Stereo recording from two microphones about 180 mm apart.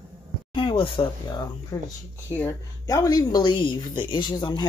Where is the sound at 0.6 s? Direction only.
30° left (ahead or behind).